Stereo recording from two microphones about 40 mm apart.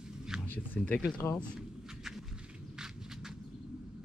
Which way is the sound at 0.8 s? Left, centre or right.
Centre.